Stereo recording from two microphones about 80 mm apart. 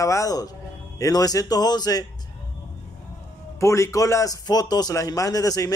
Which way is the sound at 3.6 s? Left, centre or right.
Left.